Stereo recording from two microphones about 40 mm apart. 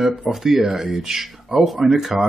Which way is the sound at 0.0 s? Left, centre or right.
Centre.